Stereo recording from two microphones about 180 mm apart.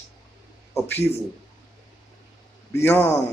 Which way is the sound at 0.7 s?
10° left (ahead or behind).